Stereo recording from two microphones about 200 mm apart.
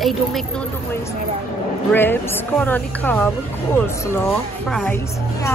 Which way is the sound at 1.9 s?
10° left (ahead or behind).